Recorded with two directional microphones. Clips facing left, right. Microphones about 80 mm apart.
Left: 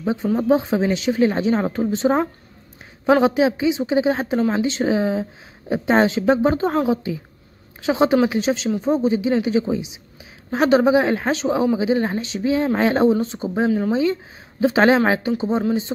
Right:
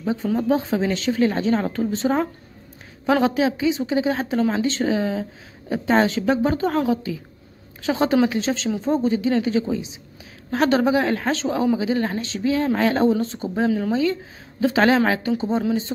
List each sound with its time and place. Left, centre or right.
0.0 s speech: centre